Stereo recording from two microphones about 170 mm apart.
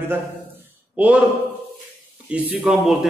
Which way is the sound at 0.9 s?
5° right (ahead or behind).